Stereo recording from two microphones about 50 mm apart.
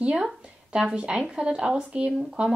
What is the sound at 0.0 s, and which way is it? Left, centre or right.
A woman's voice, centre.